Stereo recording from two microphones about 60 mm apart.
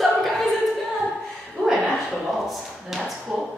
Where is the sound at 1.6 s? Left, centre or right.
Left.